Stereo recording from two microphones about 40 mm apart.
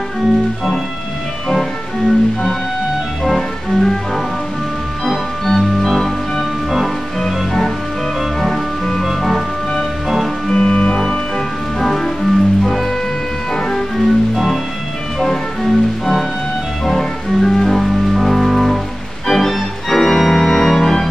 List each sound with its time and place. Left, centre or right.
3.3 s music: centre
5.0 s music: centre
10.5 s music: left
11.0 s music: centre
13.9 s music: centre
19.2 s organ: centre